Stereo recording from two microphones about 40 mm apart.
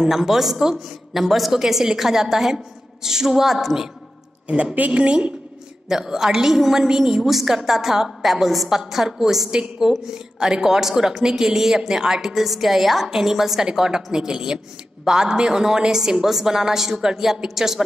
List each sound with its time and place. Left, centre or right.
0.0 s a woman's voice: centre
4.7 s a woman's voice: right
5.9 s a woman's voice: centre